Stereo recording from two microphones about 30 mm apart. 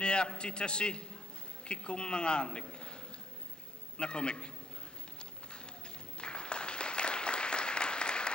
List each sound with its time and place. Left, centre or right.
0.0 s a man's voice: left
4.0 s a man's voice: left
6.1 s applause: left